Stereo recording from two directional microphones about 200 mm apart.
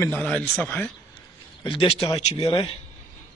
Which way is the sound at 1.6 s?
25° left (ahead or behind).